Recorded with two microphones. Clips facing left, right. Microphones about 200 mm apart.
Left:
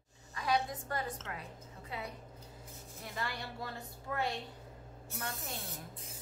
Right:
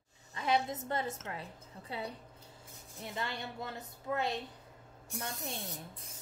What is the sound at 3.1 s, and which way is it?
A woman's voice, 25° right (ahead or behind).